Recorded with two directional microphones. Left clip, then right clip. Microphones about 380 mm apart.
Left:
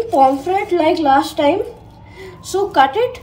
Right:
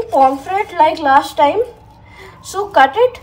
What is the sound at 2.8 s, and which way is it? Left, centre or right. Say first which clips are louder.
Speech: right 4 dB; right.